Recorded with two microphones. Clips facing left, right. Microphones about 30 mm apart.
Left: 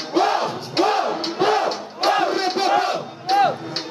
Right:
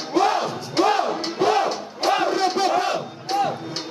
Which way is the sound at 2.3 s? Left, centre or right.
Left.